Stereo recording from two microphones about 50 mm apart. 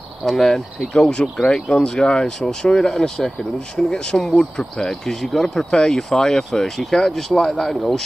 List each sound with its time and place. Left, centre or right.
0.2 s speech: centre